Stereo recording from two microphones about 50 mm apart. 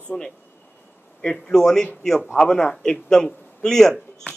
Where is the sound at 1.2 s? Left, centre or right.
Centre.